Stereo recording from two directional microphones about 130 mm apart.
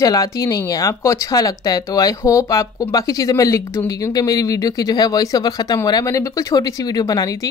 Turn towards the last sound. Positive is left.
turn(degrees=30)  # may be behind; listen again after turning